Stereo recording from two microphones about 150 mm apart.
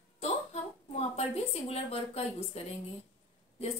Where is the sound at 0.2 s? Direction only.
45° left (ahead or behind).